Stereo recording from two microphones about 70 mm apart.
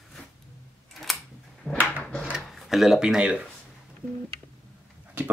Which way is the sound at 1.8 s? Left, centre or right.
Left.